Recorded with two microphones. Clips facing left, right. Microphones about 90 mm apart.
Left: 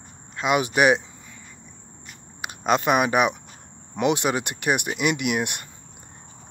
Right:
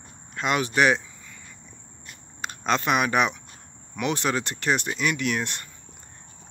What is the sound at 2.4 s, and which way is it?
Speech, 15° left (ahead or behind).